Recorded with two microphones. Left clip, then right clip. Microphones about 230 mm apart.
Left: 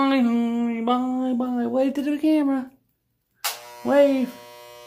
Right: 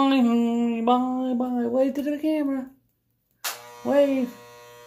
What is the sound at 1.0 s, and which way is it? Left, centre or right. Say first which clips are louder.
Speech: left 1 dB; centre.